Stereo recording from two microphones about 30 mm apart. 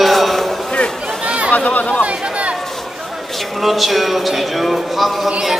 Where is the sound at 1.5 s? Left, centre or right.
Left.